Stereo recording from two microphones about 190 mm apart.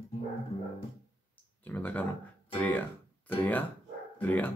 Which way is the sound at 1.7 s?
10° left (ahead or behind).